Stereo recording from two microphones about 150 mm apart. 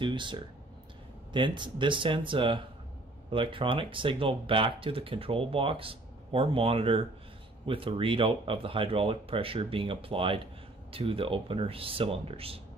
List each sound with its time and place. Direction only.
0.0 s speech: 30° right (ahead or behind)